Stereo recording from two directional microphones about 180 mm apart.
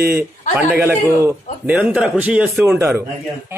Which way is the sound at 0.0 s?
10° right (ahead or behind).